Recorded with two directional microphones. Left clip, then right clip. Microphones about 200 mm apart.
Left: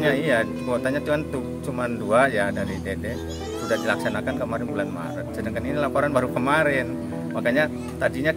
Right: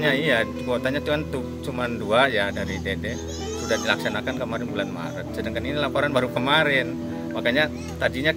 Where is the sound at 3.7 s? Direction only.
5° left (ahead or behind).